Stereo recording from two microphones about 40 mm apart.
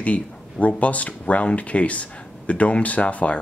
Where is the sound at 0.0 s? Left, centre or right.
Left.